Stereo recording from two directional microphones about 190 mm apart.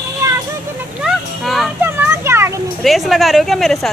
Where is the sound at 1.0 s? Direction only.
Centre (ahead or behind).